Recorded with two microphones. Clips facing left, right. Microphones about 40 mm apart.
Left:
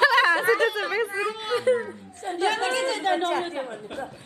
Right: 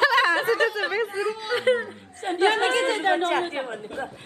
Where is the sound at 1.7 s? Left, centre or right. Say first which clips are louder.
Right 1 dB; right.